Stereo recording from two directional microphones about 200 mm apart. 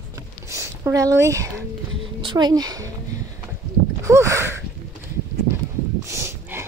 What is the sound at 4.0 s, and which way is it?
Speech, 15° right (ahead or behind).